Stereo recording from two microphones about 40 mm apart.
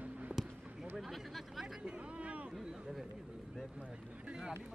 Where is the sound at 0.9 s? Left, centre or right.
Centre.